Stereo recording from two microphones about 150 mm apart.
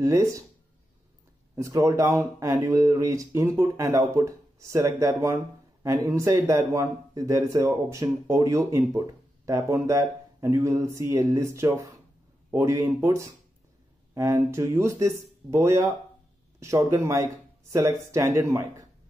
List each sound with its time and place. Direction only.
0.0 s speech: 20° right (ahead or behind)
1.5 s speech: 20° right (ahead or behind)